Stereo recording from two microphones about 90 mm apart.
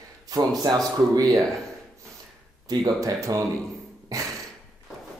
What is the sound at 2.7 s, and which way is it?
Speech, 45° right (ahead or behind).